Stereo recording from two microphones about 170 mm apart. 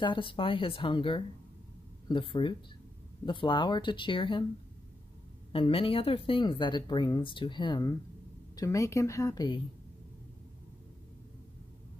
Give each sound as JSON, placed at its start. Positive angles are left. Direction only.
{"t": 0.0, "sound": "speech", "side_deg": 30}
{"t": 5.5, "sound": "speech", "side_deg": 30}